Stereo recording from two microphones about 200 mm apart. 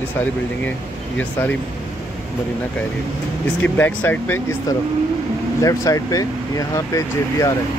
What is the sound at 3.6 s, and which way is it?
Speech, 10° left (ahead or behind).